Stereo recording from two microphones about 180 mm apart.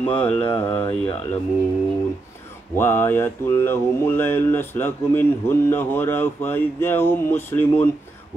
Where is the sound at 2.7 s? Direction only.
10° left (ahead or behind).